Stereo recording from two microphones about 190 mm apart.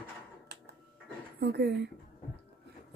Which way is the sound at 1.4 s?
60° right (ahead or behind).